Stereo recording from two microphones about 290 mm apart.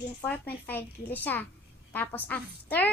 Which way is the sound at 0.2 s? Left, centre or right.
Centre.